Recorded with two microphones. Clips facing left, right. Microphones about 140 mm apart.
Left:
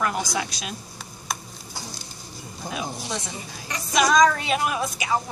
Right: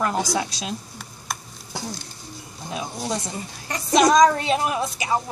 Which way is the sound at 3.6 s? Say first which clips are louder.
Right 5 dB; 35° right (ahead or behind).